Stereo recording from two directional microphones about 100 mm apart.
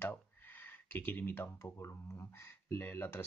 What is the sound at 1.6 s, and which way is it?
Speech, 30° left (ahead or behind).